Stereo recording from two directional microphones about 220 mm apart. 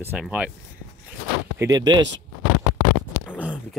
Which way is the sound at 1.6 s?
20° right (ahead or behind).